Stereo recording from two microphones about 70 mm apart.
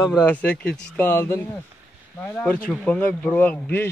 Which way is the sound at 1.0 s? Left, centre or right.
Left.